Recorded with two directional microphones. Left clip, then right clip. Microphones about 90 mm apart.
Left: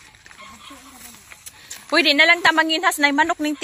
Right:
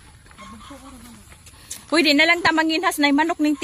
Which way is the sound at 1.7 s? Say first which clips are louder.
Left 1 dB; 30° right (ahead or behind).